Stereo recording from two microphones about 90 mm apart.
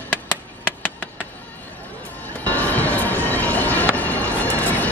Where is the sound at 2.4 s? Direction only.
20° left (ahead or behind).